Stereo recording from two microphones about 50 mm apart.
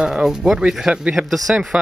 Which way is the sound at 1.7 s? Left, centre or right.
Right.